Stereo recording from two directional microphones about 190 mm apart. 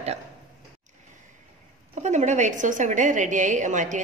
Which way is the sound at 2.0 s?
40° right (ahead or behind).